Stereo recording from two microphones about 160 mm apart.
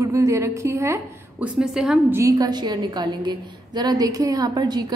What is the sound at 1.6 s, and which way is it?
Speech, 5° right (ahead or behind).